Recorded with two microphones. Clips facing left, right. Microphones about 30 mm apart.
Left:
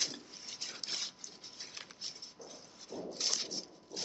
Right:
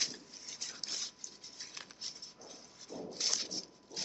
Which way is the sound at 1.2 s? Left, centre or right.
Centre.